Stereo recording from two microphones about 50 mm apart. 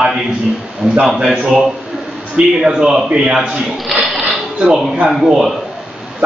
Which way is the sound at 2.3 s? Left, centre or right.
Centre.